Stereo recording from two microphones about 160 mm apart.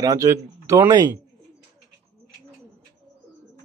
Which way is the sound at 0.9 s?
25° right (ahead or behind).